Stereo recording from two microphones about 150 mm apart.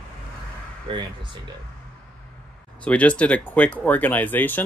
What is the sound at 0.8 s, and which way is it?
Speech, 30° right (ahead or behind).